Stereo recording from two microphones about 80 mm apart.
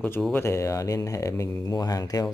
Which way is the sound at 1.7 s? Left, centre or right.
Left.